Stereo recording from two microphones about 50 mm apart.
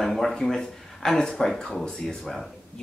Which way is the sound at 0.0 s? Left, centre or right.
Centre.